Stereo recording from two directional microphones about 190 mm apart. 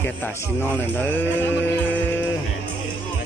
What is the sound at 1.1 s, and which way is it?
Mantra, 10° left (ahead or behind).